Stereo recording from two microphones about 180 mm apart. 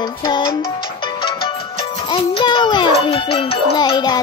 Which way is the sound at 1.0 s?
30° left (ahead or behind).